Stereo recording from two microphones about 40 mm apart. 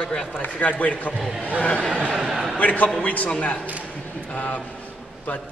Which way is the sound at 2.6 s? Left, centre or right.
Left.